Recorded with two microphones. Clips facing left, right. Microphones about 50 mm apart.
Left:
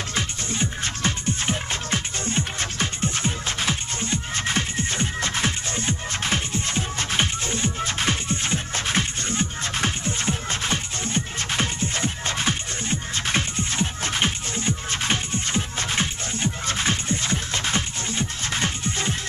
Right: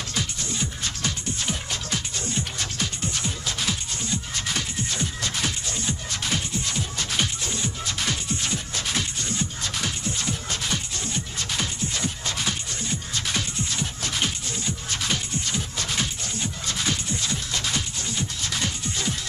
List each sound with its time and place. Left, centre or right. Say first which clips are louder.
0.1 s music: left 2 dB; left